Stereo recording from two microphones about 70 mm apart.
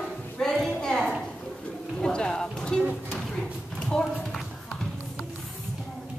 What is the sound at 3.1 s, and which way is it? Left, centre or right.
Clip-clop, centre.